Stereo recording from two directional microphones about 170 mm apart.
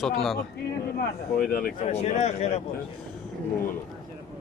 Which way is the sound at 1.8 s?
40° left (ahead or behind).